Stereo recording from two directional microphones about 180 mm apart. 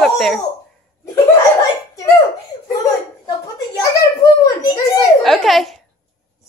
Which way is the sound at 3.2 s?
20° left (ahead or behind).